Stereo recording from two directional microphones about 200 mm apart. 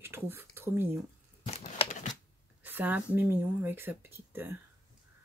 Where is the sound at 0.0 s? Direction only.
10° right (ahead or behind).